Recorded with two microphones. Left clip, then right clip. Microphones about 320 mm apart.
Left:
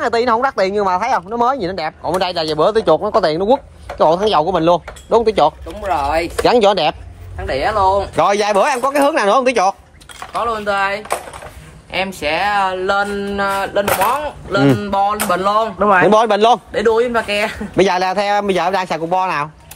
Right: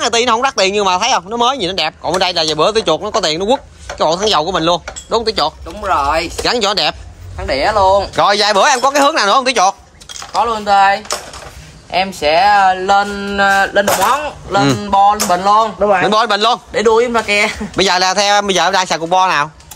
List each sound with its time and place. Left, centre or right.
0.0 s speech: centre
5.9 s speech: right
6.4 s a man's voice: centre
7.3 s speech: right
8.2 s speech: centre
10.4 s speech: right
14.8 s music: centre
15.8 s a man's voice: left
16.1 s a man's voice: centre
16.7 s speech: right
17.7 s speech: centre